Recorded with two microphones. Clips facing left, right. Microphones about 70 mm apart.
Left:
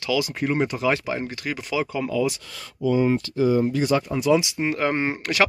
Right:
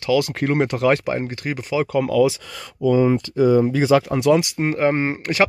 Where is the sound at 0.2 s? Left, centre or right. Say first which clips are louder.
Right 3 dB; right.